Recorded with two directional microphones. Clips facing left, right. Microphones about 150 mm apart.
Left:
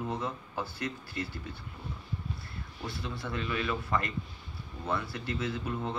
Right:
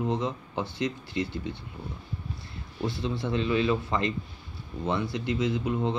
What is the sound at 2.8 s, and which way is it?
Speech, 25° right (ahead or behind).